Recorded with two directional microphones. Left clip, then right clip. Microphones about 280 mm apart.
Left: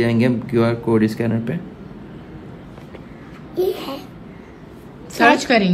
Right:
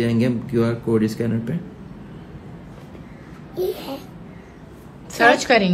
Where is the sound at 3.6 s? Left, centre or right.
Left.